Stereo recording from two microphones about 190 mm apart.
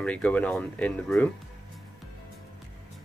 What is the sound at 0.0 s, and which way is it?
Speech, 5° left (ahead or behind).